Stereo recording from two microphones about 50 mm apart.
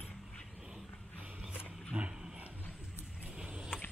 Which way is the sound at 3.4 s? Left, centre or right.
Centre.